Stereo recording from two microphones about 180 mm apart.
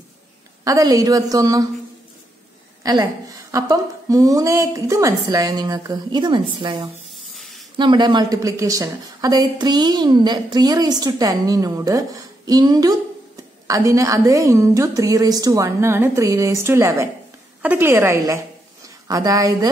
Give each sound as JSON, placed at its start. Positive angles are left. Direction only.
{"t": 0.7, "sound": "a woman's voice", "side_deg": -20}
{"t": 2.8, "sound": "a woman's voice", "side_deg": -20}